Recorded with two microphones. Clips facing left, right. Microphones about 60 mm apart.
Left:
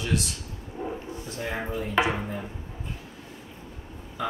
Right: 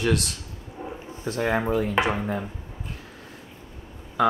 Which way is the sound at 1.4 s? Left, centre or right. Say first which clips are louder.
Right 8 dB; right.